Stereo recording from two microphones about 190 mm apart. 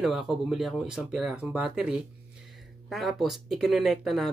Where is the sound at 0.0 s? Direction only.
5° right (ahead or behind).